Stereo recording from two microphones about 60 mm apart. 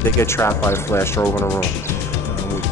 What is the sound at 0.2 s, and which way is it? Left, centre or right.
Speech, left.